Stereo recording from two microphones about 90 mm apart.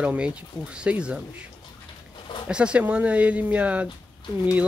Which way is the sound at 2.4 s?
10° right (ahead or behind).